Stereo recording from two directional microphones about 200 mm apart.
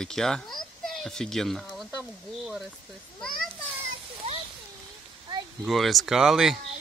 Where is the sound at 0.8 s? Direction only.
Centre (ahead or behind).